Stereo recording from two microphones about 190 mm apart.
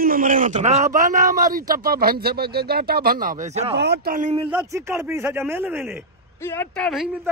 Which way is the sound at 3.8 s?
60° right (ahead or behind).